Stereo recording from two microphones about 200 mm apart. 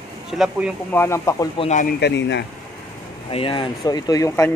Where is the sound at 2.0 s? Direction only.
60° left (ahead or behind).